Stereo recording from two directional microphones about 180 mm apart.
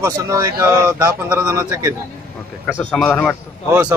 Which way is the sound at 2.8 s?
5° left (ahead or behind).